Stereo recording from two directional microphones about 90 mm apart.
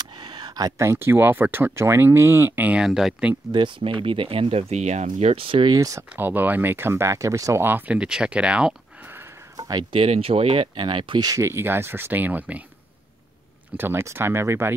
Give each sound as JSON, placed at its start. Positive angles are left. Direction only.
{"t": 0.2, "sound": "a sound", "side_deg": -55}
{"t": 0.7, "sound": "speech", "side_deg": -30}
{"t": 3.5, "sound": "speech", "side_deg": -65}
{"t": 5.7, "sound": "speech", "side_deg": -40}
{"t": 6.1, "sound": "speech", "side_deg": -20}
{"t": 7.6, "sound": "speech", "side_deg": -20}
{"t": 9.6, "sound": "a sound", "side_deg": -45}
{"t": 9.9, "sound": "speech", "side_deg": -90}
{"t": 11.3, "sound": "speech", "side_deg": -30}
{"t": 13.7, "sound": "speech", "side_deg": -25}